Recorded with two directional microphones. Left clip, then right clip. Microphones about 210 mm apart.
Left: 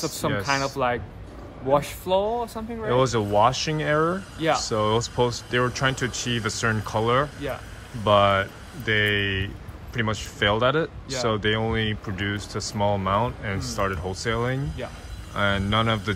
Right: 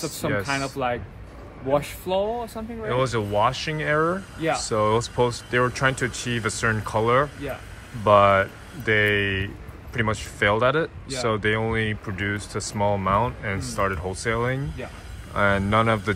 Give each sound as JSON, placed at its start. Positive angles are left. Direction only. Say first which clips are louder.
{"t": 0.0, "sound": "speech", "louder": "even", "side_deg": 5}
{"t": 2.9, "sound": "speech", "louder": "left 2 dB", "side_deg": 15}